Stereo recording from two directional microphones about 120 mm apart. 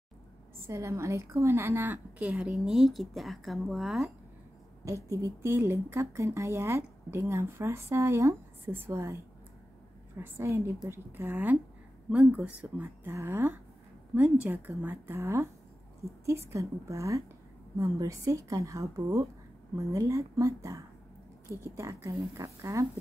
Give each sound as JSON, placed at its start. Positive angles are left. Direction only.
{"t": 0.6, "sound": "a woman's voice", "side_deg": -20}
{"t": 4.8, "sound": "a woman's voice", "side_deg": -25}